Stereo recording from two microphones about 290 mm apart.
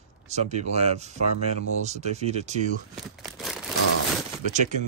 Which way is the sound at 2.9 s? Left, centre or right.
Centre.